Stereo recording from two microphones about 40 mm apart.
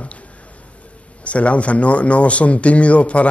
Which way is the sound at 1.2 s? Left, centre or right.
Left.